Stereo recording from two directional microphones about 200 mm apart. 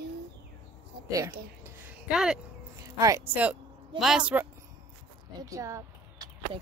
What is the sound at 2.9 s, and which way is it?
Speech, 15° right (ahead or behind).